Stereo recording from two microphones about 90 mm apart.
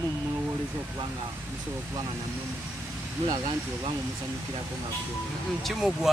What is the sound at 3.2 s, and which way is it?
Speech, 90° right.